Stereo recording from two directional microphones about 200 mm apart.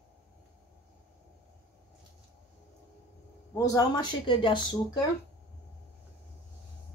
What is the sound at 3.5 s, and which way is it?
Speech, 20° left (ahead or behind).